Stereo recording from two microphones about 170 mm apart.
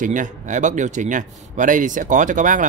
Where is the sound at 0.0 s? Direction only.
50° right (ahead or behind).